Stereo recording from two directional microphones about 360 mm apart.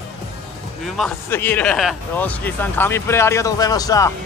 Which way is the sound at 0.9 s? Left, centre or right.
Centre.